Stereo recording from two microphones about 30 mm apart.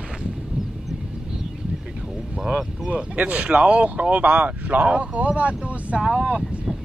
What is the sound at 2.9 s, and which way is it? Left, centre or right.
Speech, right.